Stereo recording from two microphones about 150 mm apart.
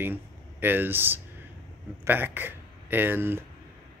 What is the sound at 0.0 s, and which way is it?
Speech, 15° right (ahead or behind).